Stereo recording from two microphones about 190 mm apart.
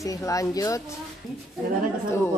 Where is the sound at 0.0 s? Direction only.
15° left (ahead or behind).